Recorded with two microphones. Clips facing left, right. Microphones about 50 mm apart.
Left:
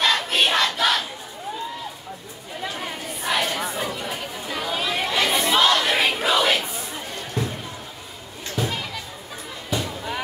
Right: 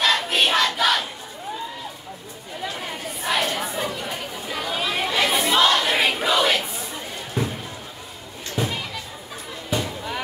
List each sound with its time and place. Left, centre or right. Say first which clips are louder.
0.0 s crowd: even; centre
2.7 s chatter: even; centre
7.4 s music: right 2 dB; centre
8.5 s children playing: even; centre
9.8 s a sound: even; centre